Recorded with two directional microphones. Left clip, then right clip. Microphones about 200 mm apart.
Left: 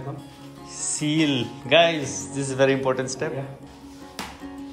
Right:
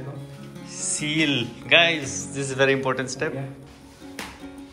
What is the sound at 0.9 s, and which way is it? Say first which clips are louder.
A man's voice: even; 10° left (ahead or behind).